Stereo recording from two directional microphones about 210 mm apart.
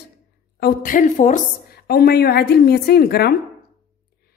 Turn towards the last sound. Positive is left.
turn(degrees=50)  # may be behind; listen again after turning